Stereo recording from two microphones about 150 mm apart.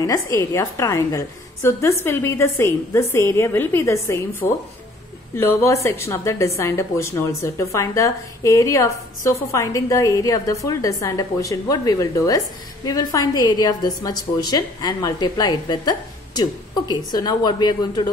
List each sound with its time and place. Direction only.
0.0 s a woman's voice: 20° left (ahead or behind)